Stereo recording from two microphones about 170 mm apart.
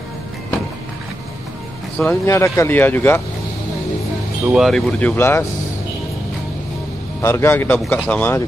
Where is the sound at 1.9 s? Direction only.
15° left (ahead or behind).